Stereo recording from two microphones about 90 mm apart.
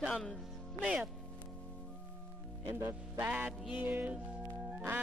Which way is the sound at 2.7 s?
25° right (ahead or behind).